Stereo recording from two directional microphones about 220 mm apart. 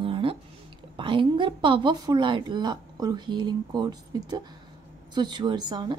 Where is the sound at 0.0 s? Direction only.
25° right (ahead or behind).